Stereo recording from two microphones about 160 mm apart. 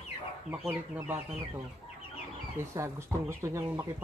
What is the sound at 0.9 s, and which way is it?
Speech, 15° right (ahead or behind).